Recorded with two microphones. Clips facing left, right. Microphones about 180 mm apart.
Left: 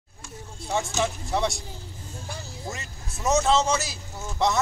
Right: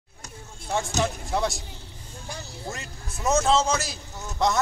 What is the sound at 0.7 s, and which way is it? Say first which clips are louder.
Speech: even; centre (ahead or behind).